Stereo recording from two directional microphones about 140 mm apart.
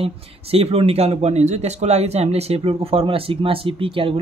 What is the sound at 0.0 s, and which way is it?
Speech, 45° right (ahead or behind).